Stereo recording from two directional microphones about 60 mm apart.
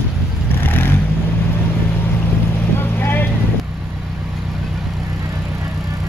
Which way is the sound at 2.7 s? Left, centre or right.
Left.